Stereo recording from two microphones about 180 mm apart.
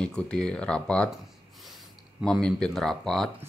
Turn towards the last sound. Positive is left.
turn(degrees=0)  # may be behind; listen again after turning